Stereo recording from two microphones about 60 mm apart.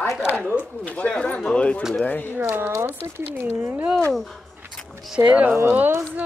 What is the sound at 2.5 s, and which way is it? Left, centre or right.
Speech, right.